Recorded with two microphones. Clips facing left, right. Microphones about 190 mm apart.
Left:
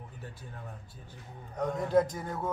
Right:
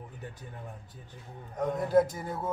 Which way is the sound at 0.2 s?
15° right (ahead or behind).